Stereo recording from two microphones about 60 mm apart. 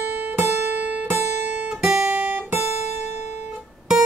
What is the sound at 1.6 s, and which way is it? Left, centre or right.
Guitar, centre.